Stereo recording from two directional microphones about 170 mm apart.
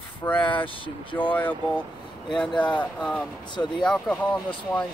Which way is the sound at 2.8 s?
5° left (ahead or behind).